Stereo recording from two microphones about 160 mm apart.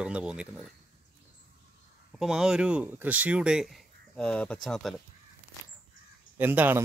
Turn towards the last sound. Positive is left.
turn(degrees=-10)  # may be behind; listen again after turning